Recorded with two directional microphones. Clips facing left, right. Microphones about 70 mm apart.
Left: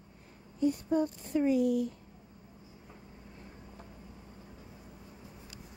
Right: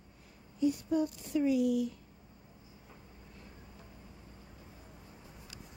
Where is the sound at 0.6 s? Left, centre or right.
Left.